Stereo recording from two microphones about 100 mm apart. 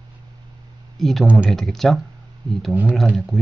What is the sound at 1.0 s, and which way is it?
Speech, centre (ahead or behind).